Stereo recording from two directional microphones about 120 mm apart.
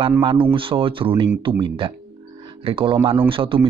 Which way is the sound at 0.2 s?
45° right (ahead or behind).